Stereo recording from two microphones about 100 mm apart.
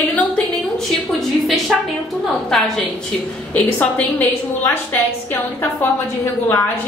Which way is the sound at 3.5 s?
15° left (ahead or behind).